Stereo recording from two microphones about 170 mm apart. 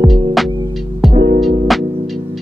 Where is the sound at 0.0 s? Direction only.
Centre (ahead or behind).